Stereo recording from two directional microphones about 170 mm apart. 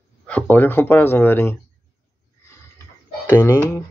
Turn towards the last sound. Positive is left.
turn(degrees=15)  # may be behind; listen again after turning